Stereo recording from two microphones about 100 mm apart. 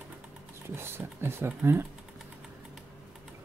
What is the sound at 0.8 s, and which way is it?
Speech, 25° right (ahead or behind).